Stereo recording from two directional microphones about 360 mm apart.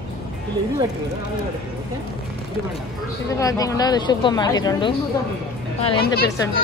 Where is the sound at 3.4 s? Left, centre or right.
Centre.